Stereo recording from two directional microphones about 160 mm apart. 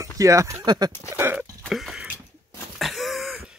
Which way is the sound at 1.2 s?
15° right (ahead or behind).